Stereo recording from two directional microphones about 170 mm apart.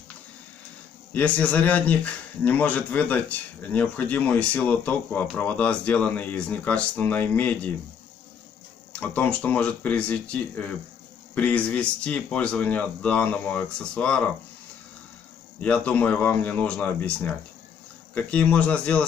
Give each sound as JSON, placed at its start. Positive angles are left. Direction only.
{"t": 1.1, "sound": "speech", "side_deg": 10}
{"t": 9.0, "sound": "speech", "side_deg": 10}
{"t": 15.6, "sound": "speech", "side_deg": 10}